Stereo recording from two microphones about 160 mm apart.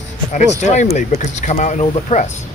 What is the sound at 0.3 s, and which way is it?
Speech, 50° left (ahead or behind).